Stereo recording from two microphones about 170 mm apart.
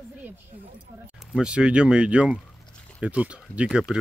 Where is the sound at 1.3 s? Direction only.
5° right (ahead or behind).